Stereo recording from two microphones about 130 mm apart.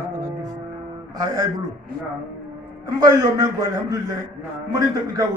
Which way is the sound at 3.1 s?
30° right (ahead or behind).